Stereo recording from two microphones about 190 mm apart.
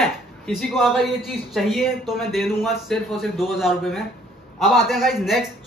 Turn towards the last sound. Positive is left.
turn(degrees=0)  # may be behind; listen again after turning